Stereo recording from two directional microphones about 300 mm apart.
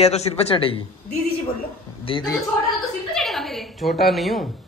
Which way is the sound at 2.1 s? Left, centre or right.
Centre.